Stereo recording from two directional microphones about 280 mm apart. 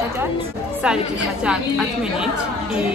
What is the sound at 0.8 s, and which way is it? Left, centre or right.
A woman's voice, centre.